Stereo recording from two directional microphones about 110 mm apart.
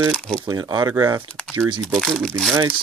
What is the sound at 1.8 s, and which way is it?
Speech, 5° left (ahead or behind).